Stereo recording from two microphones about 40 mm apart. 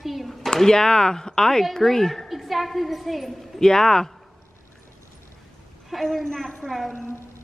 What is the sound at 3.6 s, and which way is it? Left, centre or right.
Speech, centre.